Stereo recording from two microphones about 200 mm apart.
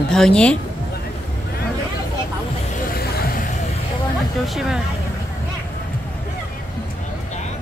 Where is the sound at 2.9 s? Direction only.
50° left (ahead or behind).